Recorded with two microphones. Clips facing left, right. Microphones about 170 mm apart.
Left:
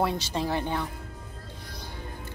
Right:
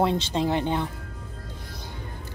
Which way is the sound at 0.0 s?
20° right (ahead or behind).